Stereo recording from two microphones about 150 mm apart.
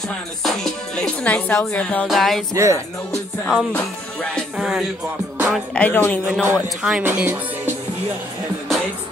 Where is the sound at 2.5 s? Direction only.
20° right (ahead or behind).